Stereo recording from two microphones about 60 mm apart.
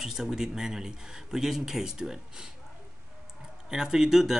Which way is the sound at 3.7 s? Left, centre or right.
Centre.